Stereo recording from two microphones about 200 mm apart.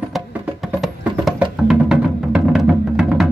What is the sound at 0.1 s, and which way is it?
Music, 5° right (ahead or behind).